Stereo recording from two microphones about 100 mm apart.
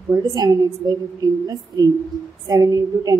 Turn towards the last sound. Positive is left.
turn(degrees=-40)  # may be behind; listen again after turning